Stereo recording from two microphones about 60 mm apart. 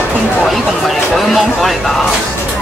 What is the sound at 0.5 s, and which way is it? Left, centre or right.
Speech, centre.